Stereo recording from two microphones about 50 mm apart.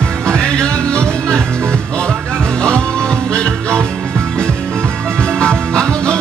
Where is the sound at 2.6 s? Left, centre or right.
Centre.